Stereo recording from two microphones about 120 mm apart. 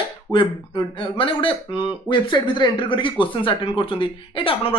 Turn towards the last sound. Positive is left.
turn(degrees=50)  # may be behind; listen again after turning